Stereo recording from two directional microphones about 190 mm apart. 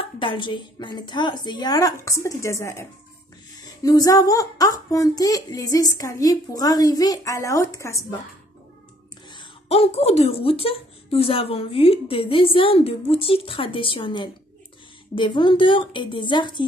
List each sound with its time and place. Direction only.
0.0 s speech: 25° left (ahead or behind)
9.3 s speech: 30° left (ahead or behind)